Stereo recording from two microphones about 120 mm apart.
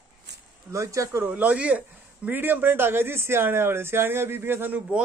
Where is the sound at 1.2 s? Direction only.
15° right (ahead or behind).